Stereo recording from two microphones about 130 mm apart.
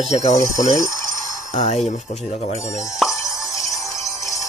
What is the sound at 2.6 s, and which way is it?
Speech, 25° left (ahead or behind).